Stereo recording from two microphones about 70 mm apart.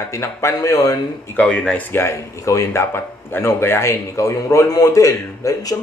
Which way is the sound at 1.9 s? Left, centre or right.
Left.